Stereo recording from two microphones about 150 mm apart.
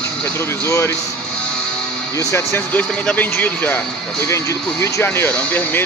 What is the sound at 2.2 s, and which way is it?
Speech, 20° left (ahead or behind).